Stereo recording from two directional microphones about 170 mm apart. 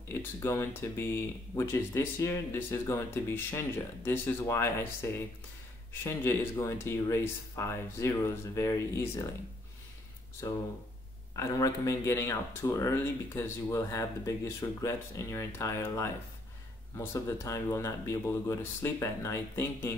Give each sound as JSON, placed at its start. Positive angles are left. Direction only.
{"t": 0.1, "sound": "speech", "side_deg": 15}
{"t": 10.4, "sound": "speech", "side_deg": 20}